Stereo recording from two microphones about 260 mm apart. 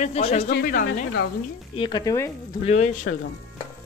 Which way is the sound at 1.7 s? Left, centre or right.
Centre.